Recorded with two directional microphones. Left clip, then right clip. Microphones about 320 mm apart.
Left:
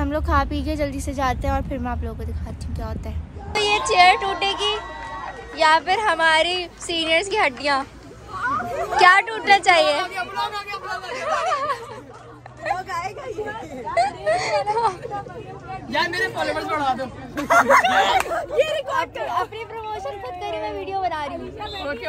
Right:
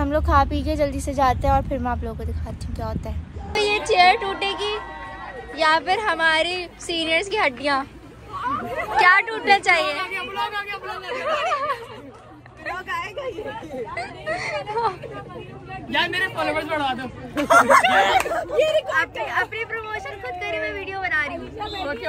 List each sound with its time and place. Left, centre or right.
0.0 s speech: centre
3.5 s speech: centre
12.6 s a sound: centre
13.9 s speech: centre
17.4 s speech: right
17.8 s speech: centre